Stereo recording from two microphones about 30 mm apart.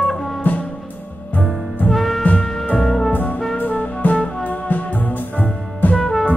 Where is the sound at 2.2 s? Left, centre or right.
Left.